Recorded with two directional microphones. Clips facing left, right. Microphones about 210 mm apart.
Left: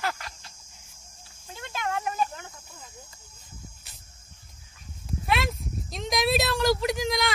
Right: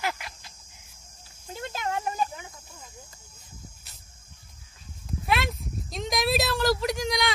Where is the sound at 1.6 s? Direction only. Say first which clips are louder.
Even; 35° right (ahead or behind).